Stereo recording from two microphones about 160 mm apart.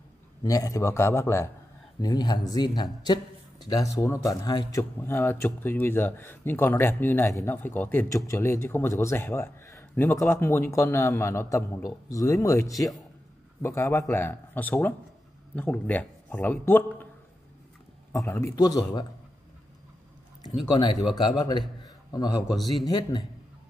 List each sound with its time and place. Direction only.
0.4 s speech: 20° left (ahead or behind)
18.1 s speech: 20° left (ahead or behind)
21.2 s speech: 25° left (ahead or behind)
22.5 s a man's voice: centre (ahead or behind)
22.8 s speech: 25° left (ahead or behind)